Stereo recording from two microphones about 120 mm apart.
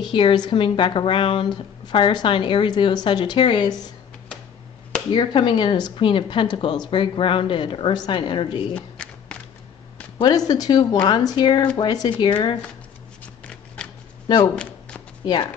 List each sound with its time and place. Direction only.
0.1 s a woman's voice: 40° left (ahead or behind)
5.1 s speech: 40° left (ahead or behind)
8.7 s a sound: 10° left (ahead or behind)
10.1 s speech: 35° left (ahead or behind)
13.8 s a sound: 10° left (ahead or behind)
14.2 s speech: 35° left (ahead or behind)
14.5 s shuffling cards: 5° left (ahead or behind)